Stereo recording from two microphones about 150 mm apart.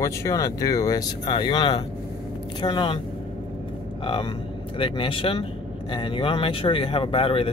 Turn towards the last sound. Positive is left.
turn(degrees=35)  # may be behind; listen again after turning